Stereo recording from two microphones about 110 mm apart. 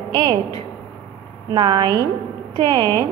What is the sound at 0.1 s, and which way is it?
Speech, 40° right (ahead or behind).